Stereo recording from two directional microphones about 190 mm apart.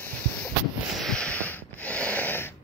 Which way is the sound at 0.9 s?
5° left (ahead or behind).